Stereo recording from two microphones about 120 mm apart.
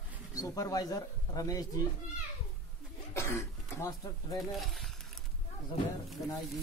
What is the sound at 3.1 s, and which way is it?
Speech, 25° left (ahead or behind).